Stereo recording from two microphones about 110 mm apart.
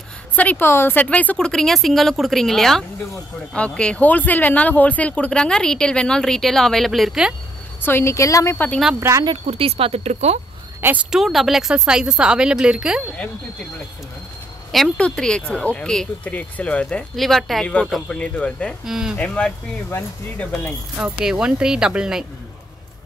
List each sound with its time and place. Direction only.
0.4 s speech: 15° left (ahead or behind); by 7.3 s 5° right (ahead or behind)
7.8 s speech: 20° left (ahead or behind)
9.5 s speech: 60° right (ahead or behind)
11.1 s speech: 5° right (ahead or behind)
14.7 s speech: 5° left (ahead or behind)
17.1 s speech: centre (ahead or behind)
18.9 s speech: 5° right (ahead or behind)
19.1 s speech: 10° left (ahead or behind)
21.0 s speech: 10° right (ahead or behind)